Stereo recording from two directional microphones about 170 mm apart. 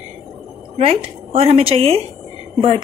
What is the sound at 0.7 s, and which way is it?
A woman's voice, 35° right (ahead or behind).